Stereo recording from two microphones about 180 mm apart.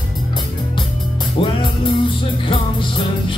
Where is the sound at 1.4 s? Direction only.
30° left (ahead or behind).